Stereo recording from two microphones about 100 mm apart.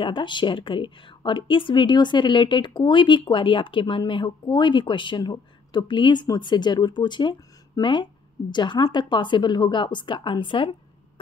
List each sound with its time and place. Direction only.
0.0 s speech: 55° left (ahead or behind)